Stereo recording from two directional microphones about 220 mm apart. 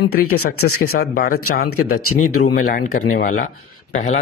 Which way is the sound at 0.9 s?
45° left (ahead or behind).